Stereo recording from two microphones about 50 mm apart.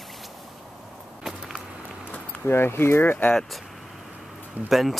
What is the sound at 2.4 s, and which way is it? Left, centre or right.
Speech, left.